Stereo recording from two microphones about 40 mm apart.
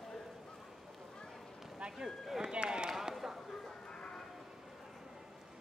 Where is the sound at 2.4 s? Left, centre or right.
Right.